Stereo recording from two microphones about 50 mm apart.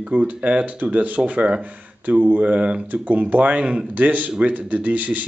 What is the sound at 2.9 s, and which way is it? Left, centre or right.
Speech, right.